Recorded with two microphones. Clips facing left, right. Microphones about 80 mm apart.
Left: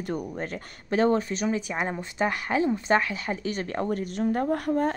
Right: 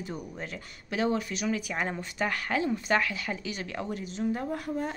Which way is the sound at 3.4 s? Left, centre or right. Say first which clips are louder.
Left 6 dB; left.